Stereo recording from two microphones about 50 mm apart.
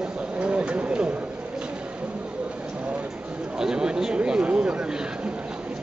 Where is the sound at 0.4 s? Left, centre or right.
Right.